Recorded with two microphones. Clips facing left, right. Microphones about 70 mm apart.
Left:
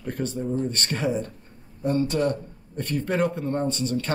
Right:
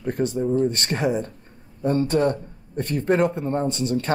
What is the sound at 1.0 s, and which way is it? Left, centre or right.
Speech, right.